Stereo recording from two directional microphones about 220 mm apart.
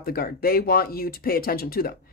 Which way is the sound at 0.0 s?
45° left (ahead or behind).